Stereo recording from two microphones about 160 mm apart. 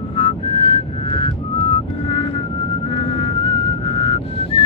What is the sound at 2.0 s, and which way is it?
Music, 35° left (ahead or behind).